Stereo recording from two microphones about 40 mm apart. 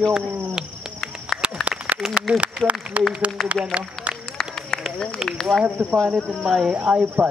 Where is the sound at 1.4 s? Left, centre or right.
Right.